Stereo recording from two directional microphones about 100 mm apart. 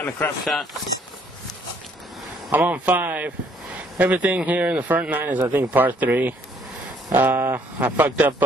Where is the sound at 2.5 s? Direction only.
15° right (ahead or behind).